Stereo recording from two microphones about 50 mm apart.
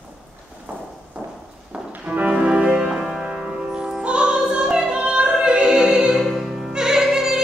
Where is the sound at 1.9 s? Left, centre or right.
Right.